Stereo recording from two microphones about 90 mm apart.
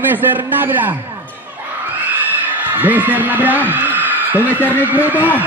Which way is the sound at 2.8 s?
20° right (ahead or behind).